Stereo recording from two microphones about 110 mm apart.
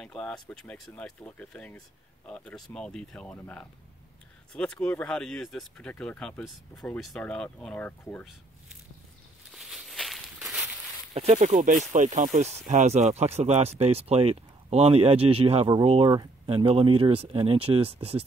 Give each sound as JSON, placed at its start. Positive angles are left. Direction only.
{"t": 0.0, "sound": "speech", "side_deg": 5}
{"t": 9.5, "sound": "a sound", "side_deg": 0}
{"t": 11.1, "sound": "speech", "side_deg": -85}